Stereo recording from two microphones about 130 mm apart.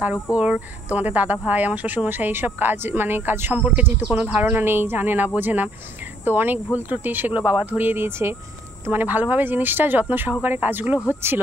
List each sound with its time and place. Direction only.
0.4 s speech: 10° right (ahead or behind)